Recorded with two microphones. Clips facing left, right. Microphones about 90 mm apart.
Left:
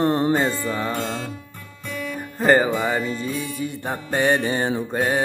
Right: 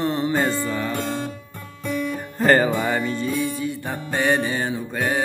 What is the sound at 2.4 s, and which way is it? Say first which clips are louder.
Music: even; 10° left (ahead or behind).